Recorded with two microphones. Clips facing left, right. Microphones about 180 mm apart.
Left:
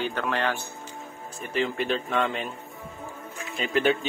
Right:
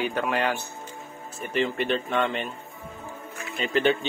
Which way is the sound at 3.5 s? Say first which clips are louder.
Right 1 dB; centre (ahead or behind).